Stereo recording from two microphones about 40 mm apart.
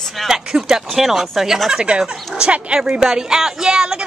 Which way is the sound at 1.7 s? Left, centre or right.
Right.